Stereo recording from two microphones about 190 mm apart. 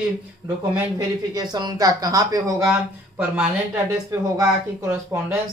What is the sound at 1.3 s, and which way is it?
Speech, 20° right (ahead or behind).